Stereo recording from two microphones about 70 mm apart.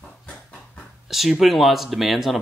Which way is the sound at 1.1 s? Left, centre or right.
Centre.